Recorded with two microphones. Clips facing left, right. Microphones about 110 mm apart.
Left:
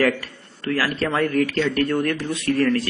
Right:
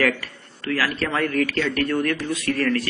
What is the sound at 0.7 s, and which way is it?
Speech, 25° left (ahead or behind).